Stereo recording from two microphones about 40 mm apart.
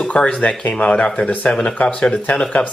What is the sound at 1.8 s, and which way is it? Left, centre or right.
Speech, left.